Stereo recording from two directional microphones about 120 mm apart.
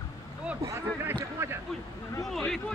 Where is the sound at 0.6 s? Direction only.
25° right (ahead or behind).